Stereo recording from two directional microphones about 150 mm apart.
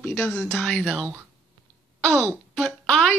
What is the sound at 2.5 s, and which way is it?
Speech, 5° left (ahead or behind).